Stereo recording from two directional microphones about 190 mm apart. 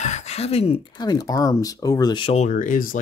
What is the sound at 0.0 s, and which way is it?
Speech, 35° left (ahead or behind).